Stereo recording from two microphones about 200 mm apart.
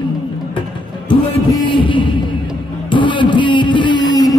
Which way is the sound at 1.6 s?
25° left (ahead or behind).